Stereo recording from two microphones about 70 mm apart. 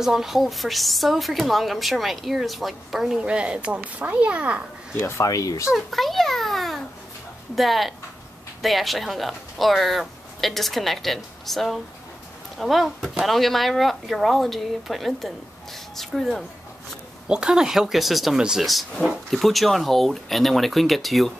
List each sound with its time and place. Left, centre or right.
0.0 s a woman's voice: centre
3.3 s speech: centre
4.9 s speech: left
5.2 s speech: left
5.7 s a sound: centre
7.5 s a woman's voice: centre
17.3 s a woman's voice: centre